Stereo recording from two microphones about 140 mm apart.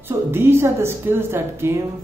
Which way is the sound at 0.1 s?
15° right (ahead or behind).